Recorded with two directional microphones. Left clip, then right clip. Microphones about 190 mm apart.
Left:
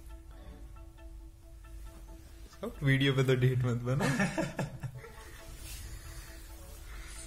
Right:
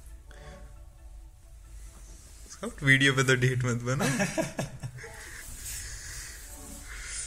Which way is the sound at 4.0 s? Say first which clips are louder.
Right 2 dB; 35° right (ahead or behind).